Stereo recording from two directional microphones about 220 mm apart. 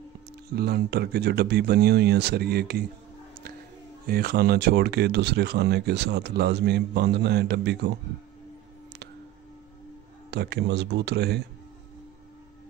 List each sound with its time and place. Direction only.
0.5 s speech: 45° right (ahead or behind)
4.1 s speech: 45° right (ahead or behind)
10.3 s speech: 50° right (ahead or behind)